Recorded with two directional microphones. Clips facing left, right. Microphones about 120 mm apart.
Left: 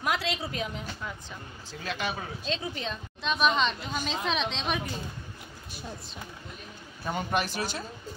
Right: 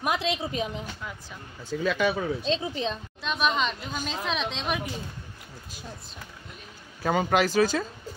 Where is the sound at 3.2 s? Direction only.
Centre (ahead or behind).